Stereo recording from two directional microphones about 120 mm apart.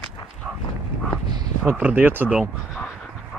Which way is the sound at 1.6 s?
15° right (ahead or behind).